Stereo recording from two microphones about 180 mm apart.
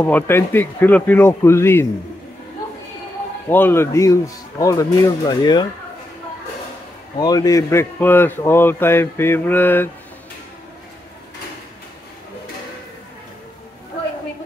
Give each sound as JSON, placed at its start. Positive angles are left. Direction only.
{"t": 0.0, "sound": "a man's voice", "side_deg": 10}
{"t": 3.4, "sound": "a man's voice", "side_deg": 10}
{"t": 7.2, "sound": "a man's voice", "side_deg": 20}